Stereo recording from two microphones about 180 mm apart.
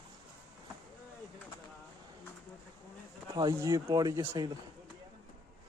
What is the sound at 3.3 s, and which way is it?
Speech, 20° right (ahead or behind).